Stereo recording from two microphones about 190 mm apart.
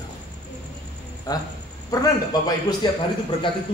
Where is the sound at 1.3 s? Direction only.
20° left (ahead or behind).